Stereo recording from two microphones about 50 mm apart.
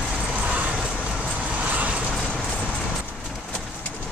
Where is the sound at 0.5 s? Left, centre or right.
Right.